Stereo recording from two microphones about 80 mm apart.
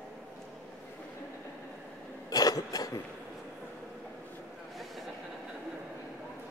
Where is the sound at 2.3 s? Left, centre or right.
Left.